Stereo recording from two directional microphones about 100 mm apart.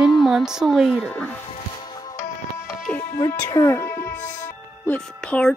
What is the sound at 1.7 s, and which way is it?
Music, 45° left (ahead or behind).